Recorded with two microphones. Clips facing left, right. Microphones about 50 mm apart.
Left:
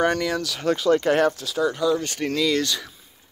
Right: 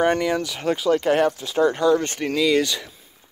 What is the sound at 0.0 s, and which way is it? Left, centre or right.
Speech, right.